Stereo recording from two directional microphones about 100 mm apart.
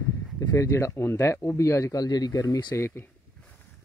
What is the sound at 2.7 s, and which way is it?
Speech, 25° left (ahead or behind).